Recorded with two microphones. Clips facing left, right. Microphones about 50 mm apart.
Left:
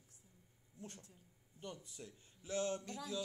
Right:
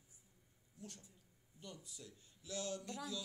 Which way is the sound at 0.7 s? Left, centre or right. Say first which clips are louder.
Left 2 dB; left.